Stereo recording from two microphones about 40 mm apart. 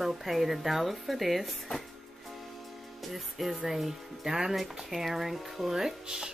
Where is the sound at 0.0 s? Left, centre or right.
Centre.